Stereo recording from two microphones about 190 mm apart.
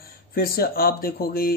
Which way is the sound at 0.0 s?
50° left (ahead or behind).